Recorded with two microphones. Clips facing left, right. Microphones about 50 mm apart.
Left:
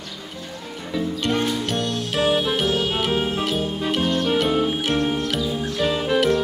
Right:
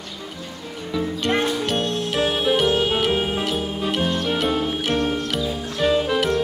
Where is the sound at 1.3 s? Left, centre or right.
Right.